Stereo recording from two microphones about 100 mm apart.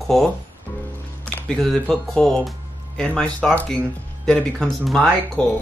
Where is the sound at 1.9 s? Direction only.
5° left (ahead or behind).